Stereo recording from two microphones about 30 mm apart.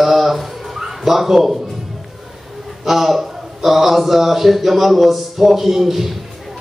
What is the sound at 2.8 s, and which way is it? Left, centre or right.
Speech, centre.